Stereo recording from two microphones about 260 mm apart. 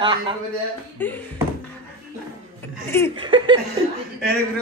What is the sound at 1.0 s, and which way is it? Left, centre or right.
Speech, centre.